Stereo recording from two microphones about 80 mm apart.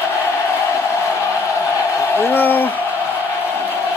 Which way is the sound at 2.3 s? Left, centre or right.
Left.